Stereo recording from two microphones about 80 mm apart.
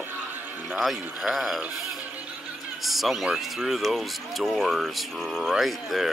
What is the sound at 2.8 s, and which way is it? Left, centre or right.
Speech, centre.